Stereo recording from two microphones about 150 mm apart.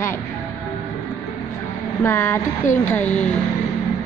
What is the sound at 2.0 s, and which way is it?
Speech, 15° left (ahead or behind).